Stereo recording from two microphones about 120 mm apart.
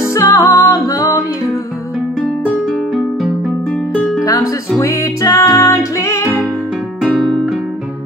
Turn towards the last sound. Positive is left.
turn(degrees=0)  # may be behind; listen again after turning